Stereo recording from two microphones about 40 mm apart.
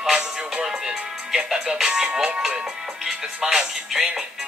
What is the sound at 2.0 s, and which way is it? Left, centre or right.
A woman's voice, centre.